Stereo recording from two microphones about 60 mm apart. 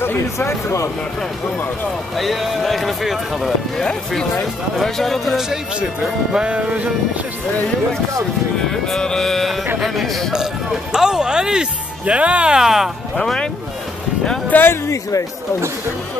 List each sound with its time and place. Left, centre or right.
0.0 s speech: left
2.1 s speech: centre
3.7 s a sound: centre
4.7 s speech: centre
6.3 s music: centre
8.6 s a sound: centre
9.8 s speech: centre
10.3 s speech: centre
13.1 s a sound: centre
14.5 s speech: left